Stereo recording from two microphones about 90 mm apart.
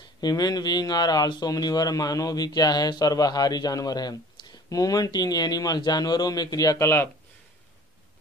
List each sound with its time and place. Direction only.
0.2 s speech: 45° left (ahead or behind); by 7.1 s 30° left (ahead or behind)